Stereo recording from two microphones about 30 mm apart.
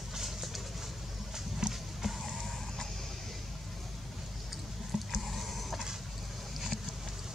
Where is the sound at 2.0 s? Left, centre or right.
Centre.